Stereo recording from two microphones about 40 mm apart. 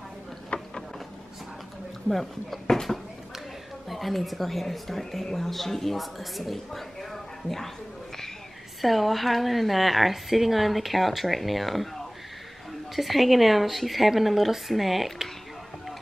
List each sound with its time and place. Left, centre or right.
0.5 s a sound: left
2.0 s a woman's voice: centre
8.8 s a woman's voice: centre